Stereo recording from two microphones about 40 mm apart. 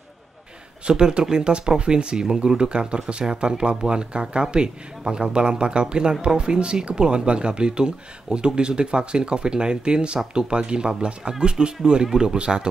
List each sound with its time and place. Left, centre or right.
0.8 s speech: right